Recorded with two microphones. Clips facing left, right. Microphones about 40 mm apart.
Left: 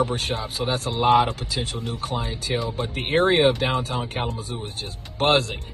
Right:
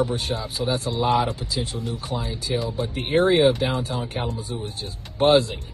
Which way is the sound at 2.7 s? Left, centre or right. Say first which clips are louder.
Even; left.